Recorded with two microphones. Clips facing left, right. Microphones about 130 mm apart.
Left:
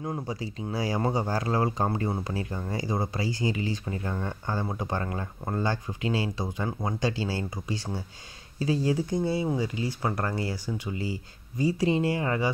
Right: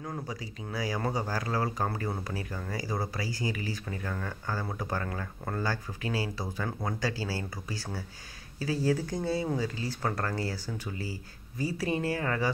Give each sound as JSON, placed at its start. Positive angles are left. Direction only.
{"t": 0.0, "sound": "speech", "side_deg": 25}